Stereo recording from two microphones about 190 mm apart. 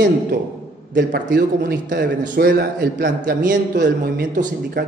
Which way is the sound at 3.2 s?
45° right (ahead or behind).